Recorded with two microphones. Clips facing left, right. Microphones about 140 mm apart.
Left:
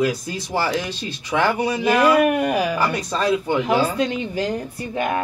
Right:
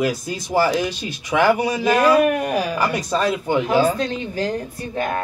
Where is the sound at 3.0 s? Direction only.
15° right (ahead or behind).